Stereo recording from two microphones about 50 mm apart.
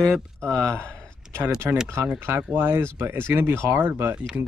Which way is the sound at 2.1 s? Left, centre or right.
Right.